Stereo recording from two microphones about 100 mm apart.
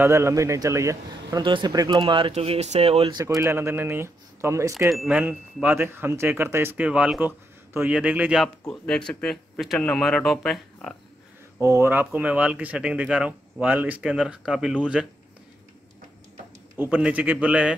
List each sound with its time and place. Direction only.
0.0 s a man's voice: 25° right (ahead or behind)
1.4 s speech: 50° right (ahead or behind)
2.0 s speech: 55° right (ahead or behind); by 3.1 s 85° right
3.3 s speech: 25° right (ahead or behind)
4.9 s speech: 5° right (ahead or behind)
6.8 s speech: 10° right (ahead or behind)
8.4 s speech: 5° left (ahead or behind)
11.6 s speech: 30° right (ahead or behind); by 15.0 s 10° right (ahead or behind)
16.7 s speech: 15° right (ahead or behind)